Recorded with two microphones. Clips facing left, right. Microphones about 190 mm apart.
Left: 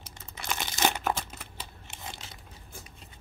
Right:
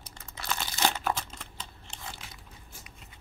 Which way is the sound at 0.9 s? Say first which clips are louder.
Left 1 dB; 10° left (ahead or behind).